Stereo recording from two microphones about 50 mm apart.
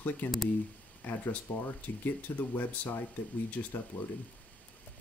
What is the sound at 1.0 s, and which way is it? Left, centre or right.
Speech, left.